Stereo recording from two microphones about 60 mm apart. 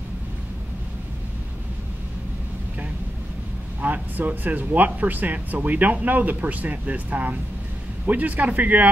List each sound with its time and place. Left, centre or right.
3.8 s speech: right